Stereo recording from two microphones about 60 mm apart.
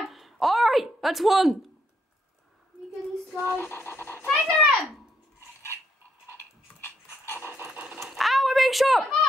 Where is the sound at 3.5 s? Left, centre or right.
Left.